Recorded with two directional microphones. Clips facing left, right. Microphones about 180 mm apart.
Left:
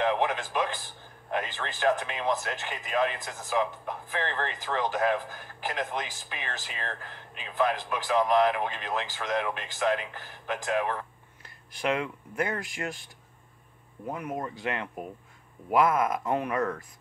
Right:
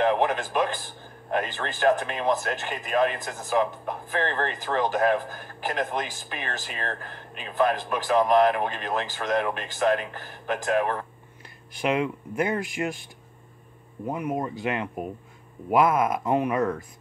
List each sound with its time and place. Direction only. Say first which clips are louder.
0.0 s speech: right 4 dB; 50° right (ahead or behind)
11.8 s speech: right 4 dB; 20° right (ahead or behind)
14.0 s speech: right 5 dB; 15° right (ahead or behind)